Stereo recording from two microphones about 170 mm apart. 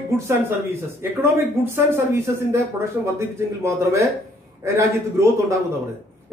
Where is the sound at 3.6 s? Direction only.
15° right (ahead or behind).